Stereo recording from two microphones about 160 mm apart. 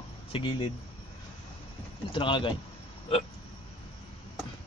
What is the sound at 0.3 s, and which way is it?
Speech, 30° left (ahead or behind).